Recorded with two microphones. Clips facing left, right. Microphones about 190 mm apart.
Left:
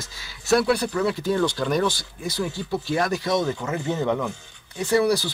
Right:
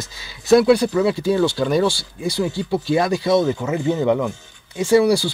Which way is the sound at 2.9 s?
10° right (ahead or behind).